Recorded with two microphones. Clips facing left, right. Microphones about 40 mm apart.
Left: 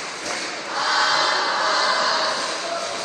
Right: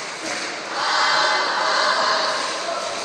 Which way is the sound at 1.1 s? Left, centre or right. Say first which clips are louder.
Right 1 dB; right.